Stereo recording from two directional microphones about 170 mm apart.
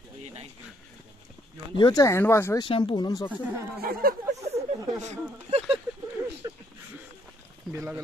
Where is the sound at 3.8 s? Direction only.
60° right (ahead or behind).